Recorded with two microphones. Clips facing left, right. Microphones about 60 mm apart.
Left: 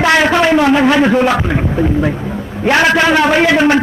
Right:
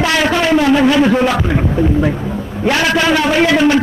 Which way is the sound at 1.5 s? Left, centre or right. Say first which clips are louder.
Even; centre.